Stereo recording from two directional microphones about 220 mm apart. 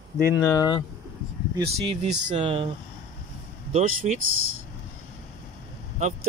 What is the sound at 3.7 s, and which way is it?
Speech, 30° right (ahead or behind).